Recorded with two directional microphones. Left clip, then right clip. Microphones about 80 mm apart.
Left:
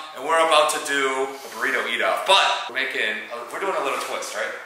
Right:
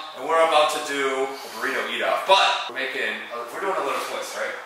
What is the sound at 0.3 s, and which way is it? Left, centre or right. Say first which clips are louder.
Speech: left 1 dB; centre.